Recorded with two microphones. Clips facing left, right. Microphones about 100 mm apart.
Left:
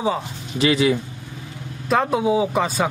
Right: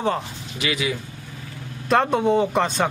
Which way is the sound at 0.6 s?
35° left (ahead or behind).